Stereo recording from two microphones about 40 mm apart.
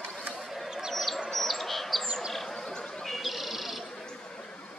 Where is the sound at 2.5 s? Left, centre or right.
Centre.